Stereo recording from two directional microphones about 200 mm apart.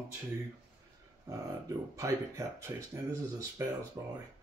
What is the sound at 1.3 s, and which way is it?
Speech, 15° right (ahead or behind).